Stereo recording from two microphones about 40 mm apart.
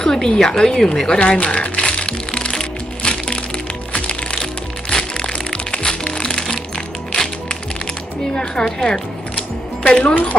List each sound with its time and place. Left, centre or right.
0.0 s a sound: centre
0.4 s speech: centre
1.4 s music: left
8.4 s a woman's voice: left